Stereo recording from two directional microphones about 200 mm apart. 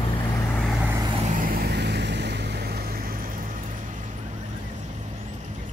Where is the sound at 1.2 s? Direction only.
40° right (ahead or behind).